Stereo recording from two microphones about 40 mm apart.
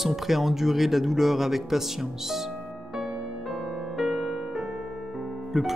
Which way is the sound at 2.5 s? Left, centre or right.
Centre.